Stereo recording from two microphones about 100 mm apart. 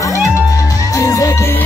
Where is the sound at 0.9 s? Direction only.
35° left (ahead or behind).